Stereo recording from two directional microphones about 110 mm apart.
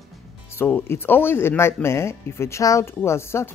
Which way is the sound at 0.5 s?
20° left (ahead or behind).